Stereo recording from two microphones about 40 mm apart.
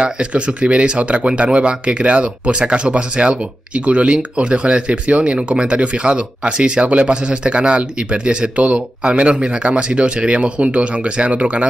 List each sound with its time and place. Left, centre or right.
0.0 s speech: right